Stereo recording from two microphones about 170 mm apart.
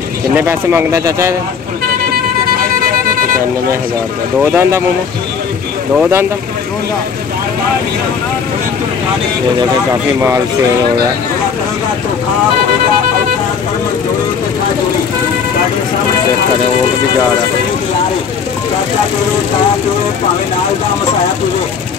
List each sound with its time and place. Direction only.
0.4 s speech: 15° right (ahead or behind)
4.4 s speech: 10° right (ahead or behind)
5.9 s speech: 15° right (ahead or behind)